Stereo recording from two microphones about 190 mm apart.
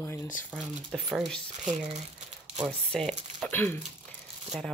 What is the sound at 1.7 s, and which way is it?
Speech, 35° right (ahead or behind).